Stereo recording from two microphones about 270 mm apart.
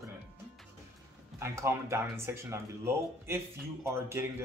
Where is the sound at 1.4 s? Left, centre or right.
Centre.